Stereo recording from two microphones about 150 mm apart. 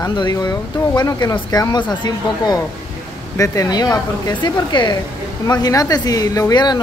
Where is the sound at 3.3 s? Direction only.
20° left (ahead or behind).